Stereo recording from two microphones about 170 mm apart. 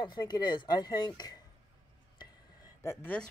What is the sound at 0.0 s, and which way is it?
Speech, 25° left (ahead or behind).